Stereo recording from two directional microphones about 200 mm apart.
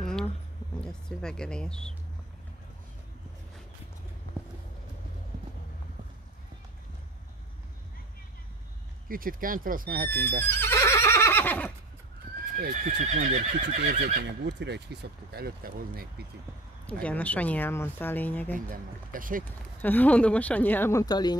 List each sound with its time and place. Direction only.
0.0 s a sound: 5° left (ahead or behind)
0.7 s speech: 5° left (ahead or behind)
9.1 s speech: 45° right (ahead or behind)
10.4 s neigh: 10° left (ahead or behind)
12.5 s speech: 45° right (ahead or behind)
13.8 s speech: 50° right (ahead or behind)
16.8 s speech: 5° left (ahead or behind)
18.7 s speech: 45° right (ahead or behind)
19.8 s speech: 10° left (ahead or behind)